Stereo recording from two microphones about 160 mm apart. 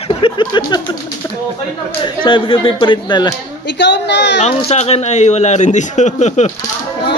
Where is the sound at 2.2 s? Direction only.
30° left (ahead or behind).